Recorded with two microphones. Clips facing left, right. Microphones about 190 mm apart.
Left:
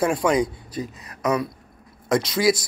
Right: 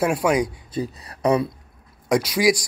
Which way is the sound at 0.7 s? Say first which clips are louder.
Right 4 dB; 35° right (ahead or behind).